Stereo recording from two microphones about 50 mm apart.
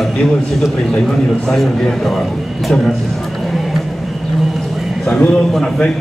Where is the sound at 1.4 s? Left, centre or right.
Centre.